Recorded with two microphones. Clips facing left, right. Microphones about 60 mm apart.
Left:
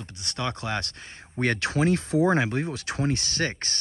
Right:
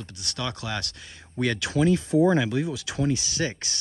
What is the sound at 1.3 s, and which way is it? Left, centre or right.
Speech, left.